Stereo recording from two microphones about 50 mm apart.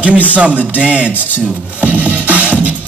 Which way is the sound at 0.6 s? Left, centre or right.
Right.